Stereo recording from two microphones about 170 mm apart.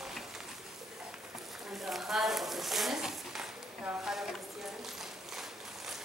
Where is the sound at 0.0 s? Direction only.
Centre (ahead or behind).